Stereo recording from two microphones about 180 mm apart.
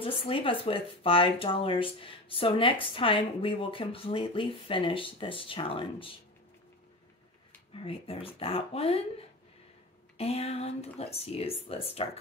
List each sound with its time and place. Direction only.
0.0 s speech: 30° left (ahead or behind)
7.7 s speech: 30° left (ahead or behind)
10.1 s speech: 35° left (ahead or behind)